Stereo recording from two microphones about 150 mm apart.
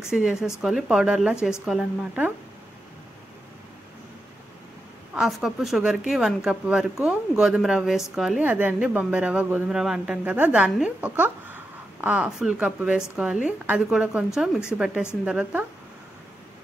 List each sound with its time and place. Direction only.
0.1 s speech: 5° right (ahead or behind)
5.1 s speech: 5° right (ahead or behind)